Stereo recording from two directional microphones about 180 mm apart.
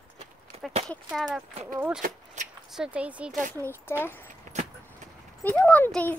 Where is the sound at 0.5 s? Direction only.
35° right (ahead or behind).